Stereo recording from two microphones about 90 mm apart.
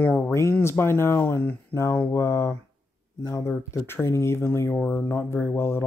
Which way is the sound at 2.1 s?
30° left (ahead or behind).